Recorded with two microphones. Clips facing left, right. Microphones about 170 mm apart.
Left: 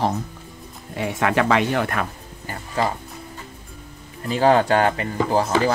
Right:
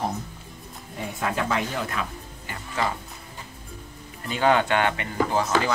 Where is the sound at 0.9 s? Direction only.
80° left; by 2.0 s 65° left (ahead or behind).